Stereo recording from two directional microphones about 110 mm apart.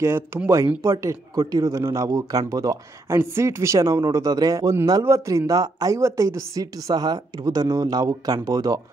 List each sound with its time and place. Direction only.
0.0 s a woman's voice: 25° right (ahead or behind)